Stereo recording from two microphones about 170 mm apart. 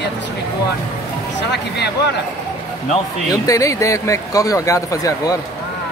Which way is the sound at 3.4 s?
20° left (ahead or behind).